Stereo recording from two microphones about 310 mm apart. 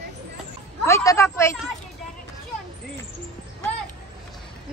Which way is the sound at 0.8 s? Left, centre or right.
Centre.